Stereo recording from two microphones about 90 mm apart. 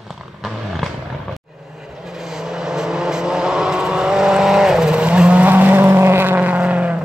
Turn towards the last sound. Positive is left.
turn(degrees=-15)  # may be behind; listen again after turning